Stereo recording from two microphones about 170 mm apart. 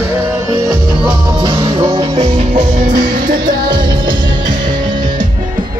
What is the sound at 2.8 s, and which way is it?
Music, 55° right (ahead or behind).